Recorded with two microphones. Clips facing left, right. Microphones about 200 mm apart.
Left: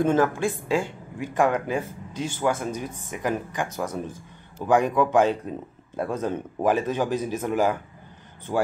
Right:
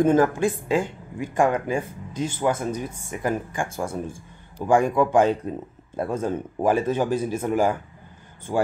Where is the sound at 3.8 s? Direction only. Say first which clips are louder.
Right 1 dB; 30° right (ahead or behind).